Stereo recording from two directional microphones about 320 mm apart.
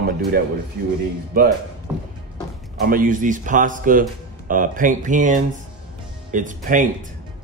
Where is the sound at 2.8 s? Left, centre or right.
Right.